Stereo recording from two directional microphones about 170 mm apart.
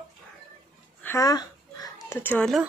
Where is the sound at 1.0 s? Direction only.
20° left (ahead or behind).